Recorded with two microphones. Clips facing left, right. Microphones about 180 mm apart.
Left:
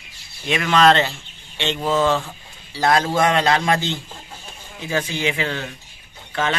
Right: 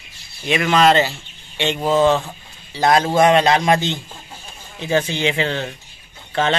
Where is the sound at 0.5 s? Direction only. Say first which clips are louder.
Right 1 dB; 5° right (ahead or behind).